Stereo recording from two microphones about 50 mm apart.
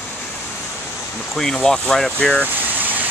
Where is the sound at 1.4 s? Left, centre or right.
Centre.